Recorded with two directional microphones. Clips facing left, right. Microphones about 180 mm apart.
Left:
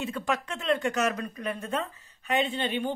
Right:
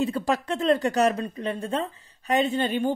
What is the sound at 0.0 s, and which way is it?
Speech, 35° right (ahead or behind).